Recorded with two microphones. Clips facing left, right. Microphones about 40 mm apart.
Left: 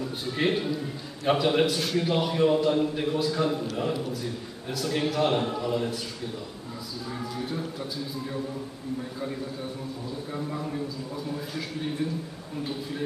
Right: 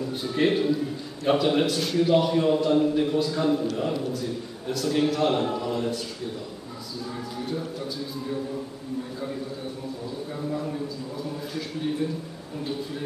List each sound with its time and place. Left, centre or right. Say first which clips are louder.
0.3 s a man's voice: right 4 dB; centre
11.5 s a man's voice: right 6 dB; centre